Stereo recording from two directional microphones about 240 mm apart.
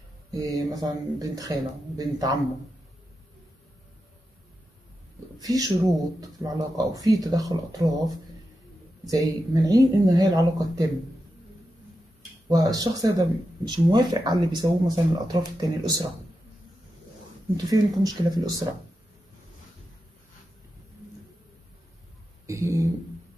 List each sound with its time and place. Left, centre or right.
0.3 s speech: centre
5.4 s speech: centre
12.4 s speech: centre
17.6 s speech: centre
22.5 s speech: centre